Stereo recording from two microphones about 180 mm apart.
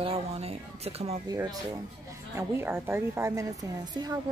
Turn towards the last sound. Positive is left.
turn(degrees=-20)  # may be behind; listen again after turning